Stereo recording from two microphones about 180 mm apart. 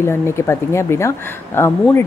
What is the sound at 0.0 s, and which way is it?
Speech, 15° left (ahead or behind).